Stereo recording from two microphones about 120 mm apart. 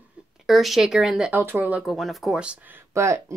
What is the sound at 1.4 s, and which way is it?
Speech, 15° right (ahead or behind).